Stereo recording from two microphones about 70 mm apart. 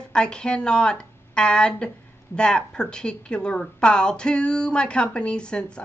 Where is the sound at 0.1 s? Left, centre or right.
Centre.